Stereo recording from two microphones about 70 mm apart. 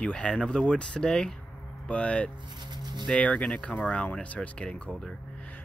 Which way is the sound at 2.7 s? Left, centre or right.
Right.